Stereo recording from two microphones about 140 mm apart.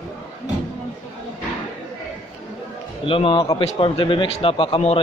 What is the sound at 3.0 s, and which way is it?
Speech, 40° left (ahead or behind).